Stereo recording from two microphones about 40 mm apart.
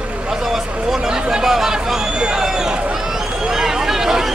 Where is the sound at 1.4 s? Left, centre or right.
Centre.